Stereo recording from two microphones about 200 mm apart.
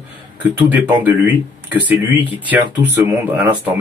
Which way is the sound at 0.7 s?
10° right (ahead or behind).